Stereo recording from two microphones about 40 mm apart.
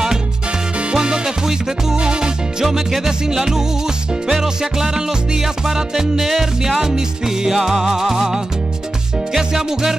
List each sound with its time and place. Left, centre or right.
0.9 s music: centre
2.6 s music: centre
6.8 s music: centre